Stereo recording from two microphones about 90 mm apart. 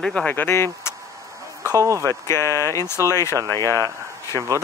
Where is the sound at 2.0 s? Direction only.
30° left (ahead or behind).